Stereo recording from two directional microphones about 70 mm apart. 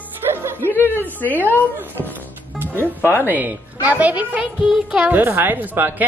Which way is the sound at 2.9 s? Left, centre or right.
Left.